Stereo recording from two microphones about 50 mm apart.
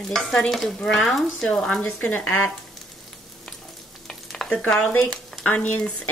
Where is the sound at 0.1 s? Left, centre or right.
Centre.